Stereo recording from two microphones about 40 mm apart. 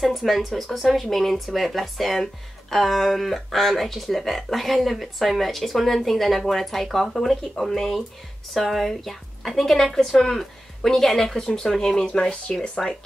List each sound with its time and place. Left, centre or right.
0.0 s speech: centre; by 12.4 s left
12.8 s speech: centre